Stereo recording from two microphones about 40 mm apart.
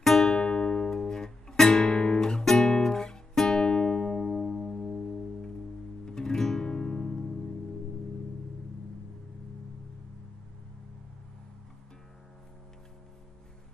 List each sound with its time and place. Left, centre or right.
0.0 s music: centre
0.4 s music: left
4.7 s music: centre
6.0 s music: centre